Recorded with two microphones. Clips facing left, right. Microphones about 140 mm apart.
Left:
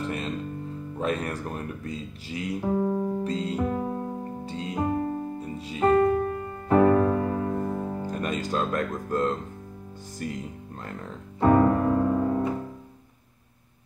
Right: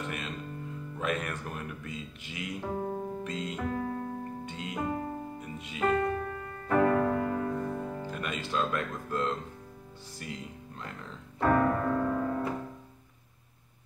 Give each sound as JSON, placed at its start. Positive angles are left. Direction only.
{"t": 0.0, "sound": "music", "side_deg": 35}
{"t": 0.9, "sound": "speech", "side_deg": 35}
{"t": 3.6, "sound": "music", "side_deg": 25}
{"t": 10.1, "sound": "speech", "side_deg": 45}
{"t": 11.3, "sound": "music", "side_deg": 20}